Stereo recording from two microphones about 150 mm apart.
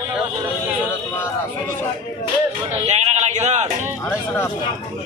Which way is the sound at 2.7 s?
45° right (ahead or behind).